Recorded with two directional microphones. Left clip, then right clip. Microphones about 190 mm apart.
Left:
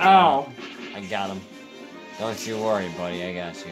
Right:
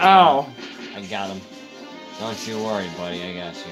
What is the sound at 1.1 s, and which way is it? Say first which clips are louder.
Speech: even; 20° left (ahead or behind).